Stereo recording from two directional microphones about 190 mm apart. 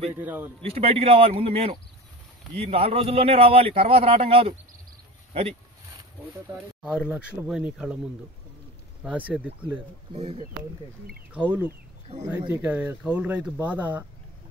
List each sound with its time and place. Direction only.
0.1 s speech: 10° right (ahead or behind)
0.7 s speech: 30° right (ahead or behind)
6.5 s speech: 5° right (ahead or behind)
9.0 s speech: 5° right (ahead or behind)
10.1 s speech: 30° right (ahead or behind)
11.3 s speech: 10° right (ahead or behind)
12.1 s speech: 30° right (ahead or behind)
12.4 s speech: 10° right (ahead or behind)